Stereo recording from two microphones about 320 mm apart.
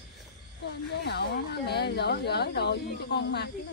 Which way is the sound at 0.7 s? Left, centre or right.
Left.